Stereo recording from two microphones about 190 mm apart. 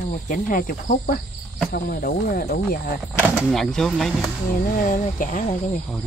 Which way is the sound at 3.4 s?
Centre (ahead or behind).